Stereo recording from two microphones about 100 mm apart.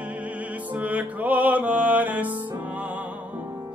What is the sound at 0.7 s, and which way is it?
Music, 15° right (ahead or behind).